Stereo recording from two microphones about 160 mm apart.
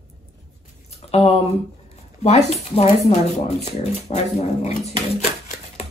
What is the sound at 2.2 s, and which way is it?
Speech, 45° left (ahead or behind).